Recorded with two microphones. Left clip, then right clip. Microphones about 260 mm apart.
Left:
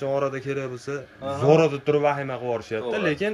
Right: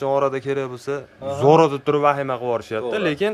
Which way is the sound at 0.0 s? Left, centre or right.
Centre.